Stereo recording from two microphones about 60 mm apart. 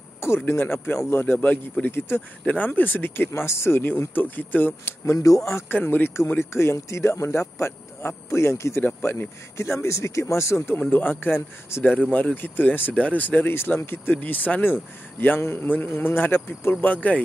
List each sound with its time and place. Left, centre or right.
0.2 s speech: left
1.4 s speech: left
1.9 s speech: left
2.4 s speech: left
4.1 s speech: left
5.7 s speech: left
8.8 s speech: left
9.6 s speech: left
10.8 s speech: left
16.8 s speech: left